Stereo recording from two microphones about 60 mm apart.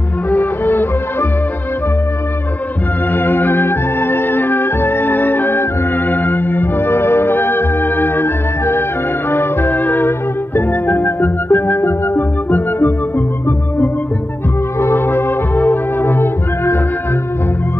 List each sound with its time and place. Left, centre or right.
0.3 s music: left
3.1 s music: left
14.8 s brass instrument: left